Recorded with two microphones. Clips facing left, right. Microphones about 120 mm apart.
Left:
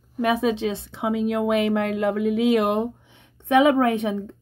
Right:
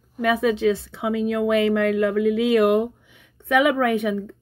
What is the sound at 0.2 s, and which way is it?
Speech, 25° left (ahead or behind).